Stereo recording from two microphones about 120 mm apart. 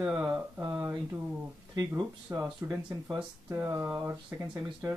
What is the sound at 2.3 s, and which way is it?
Speech, 20° right (ahead or behind).